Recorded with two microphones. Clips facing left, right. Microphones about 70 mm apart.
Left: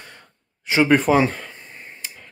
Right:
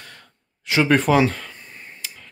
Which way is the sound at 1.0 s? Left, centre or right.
Left.